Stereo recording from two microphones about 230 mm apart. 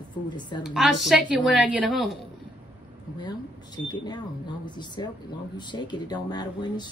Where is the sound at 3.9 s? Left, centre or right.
Centre.